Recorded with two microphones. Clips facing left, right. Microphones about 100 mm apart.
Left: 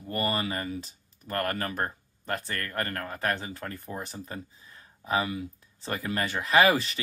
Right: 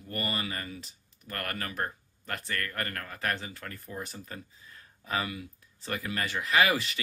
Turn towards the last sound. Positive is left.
turn(degrees=35)  # may be behind; listen again after turning